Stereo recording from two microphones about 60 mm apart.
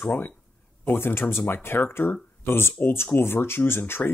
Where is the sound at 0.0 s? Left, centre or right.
Left.